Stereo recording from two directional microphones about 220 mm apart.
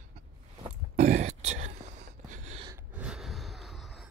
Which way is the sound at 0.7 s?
30° right (ahead or behind).